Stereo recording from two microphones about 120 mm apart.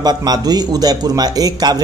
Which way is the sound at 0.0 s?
35° right (ahead or behind).